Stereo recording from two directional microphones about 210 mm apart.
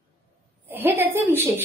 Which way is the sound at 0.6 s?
10° right (ahead or behind).